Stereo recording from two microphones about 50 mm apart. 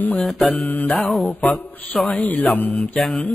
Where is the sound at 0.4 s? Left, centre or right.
Left.